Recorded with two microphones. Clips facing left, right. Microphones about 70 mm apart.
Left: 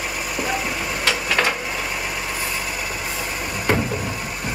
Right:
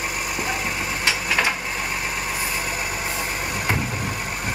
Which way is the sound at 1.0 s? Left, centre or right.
Centre.